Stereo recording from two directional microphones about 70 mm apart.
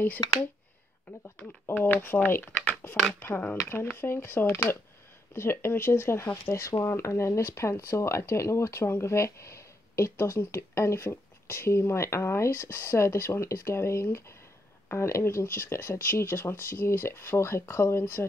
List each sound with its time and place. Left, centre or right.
0.2 s speech: left
1.7 s speech: left